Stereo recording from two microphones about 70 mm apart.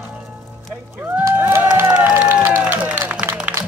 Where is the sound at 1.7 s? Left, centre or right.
Right.